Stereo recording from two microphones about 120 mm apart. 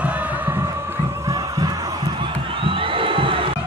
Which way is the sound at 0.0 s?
10° right (ahead or behind).